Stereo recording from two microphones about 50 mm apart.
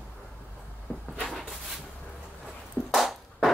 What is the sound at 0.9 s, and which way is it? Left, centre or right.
Cupboard open or close, left.